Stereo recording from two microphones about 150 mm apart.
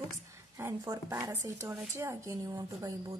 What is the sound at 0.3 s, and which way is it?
A woman's voice, 20° right (ahead or behind).